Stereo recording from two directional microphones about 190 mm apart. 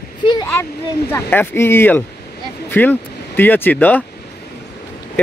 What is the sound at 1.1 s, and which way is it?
Speech, 10° left (ahead or behind).